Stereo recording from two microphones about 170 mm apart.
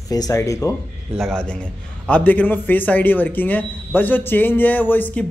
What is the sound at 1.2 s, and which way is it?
Speech, 5° left (ahead or behind).